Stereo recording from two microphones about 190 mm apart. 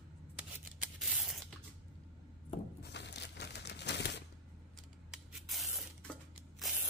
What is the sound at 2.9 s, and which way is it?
Crumpling, 65° left (ahead or behind).